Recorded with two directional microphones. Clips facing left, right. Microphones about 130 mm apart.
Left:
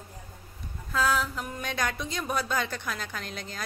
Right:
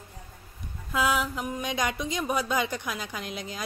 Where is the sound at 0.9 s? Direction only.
15° right (ahead or behind).